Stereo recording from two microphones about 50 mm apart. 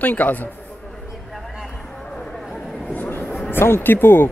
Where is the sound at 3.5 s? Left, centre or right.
Left.